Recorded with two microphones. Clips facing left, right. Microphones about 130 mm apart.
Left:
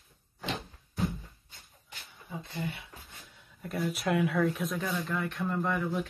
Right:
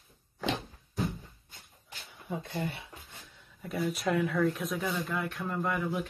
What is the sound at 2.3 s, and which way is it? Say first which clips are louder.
Speech: right 4 dB; 55° right (ahead or behind).